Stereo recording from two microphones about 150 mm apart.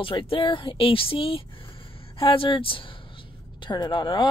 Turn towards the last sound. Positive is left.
turn(degrees=35)  # may be behind; listen again after turning